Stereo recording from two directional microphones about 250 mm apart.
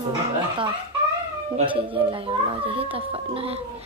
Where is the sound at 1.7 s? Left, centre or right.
Right.